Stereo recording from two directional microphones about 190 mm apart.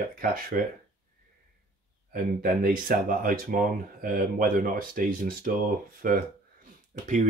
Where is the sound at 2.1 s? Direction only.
50° right (ahead or behind).